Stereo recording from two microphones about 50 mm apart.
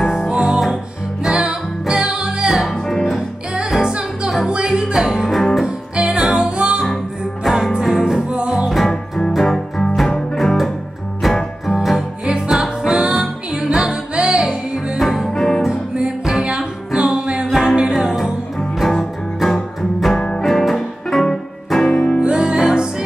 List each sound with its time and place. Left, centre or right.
0.0 s music: centre
0.3 s music: centre
4.5 s music: centre
5.3 s music: centre
5.9 s music: centre
8.3 s music: centre
8.6 s music: centre
15.0 s music: centre
16.4 s music: centre
17.5 s music: centre
18.8 s music: centre
20.4 s music: centre
21.9 s music: left
22.2 s music: centre